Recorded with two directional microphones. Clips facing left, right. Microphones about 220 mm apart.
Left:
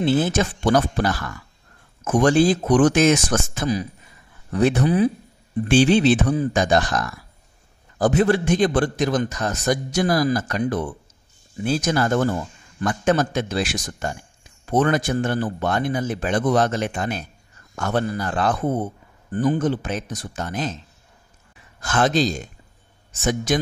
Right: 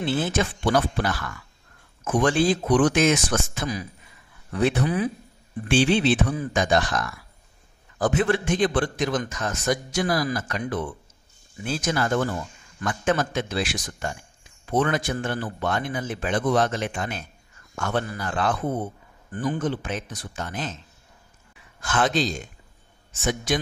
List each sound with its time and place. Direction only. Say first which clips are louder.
0.0 s a man's voice: left 5 dB; 40° left (ahead or behind)
21.8 s a man's voice: left 4 dB; 40° left (ahead or behind)